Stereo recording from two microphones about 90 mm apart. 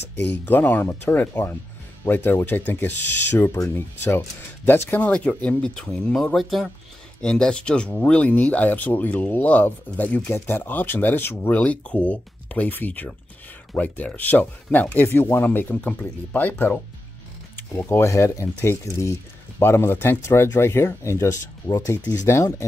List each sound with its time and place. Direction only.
0.1 s speech: 20° left (ahead or behind)